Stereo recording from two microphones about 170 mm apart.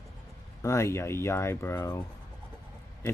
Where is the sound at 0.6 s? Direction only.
15° left (ahead or behind).